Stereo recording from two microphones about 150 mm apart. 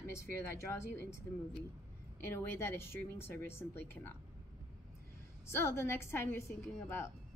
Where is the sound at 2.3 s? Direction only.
15° left (ahead or behind).